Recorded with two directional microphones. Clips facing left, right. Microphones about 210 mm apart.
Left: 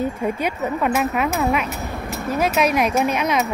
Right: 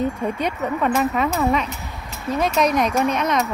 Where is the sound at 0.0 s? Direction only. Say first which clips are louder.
Even; 5° left (ahead or behind).